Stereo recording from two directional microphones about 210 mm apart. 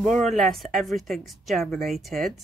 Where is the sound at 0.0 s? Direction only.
Centre (ahead or behind).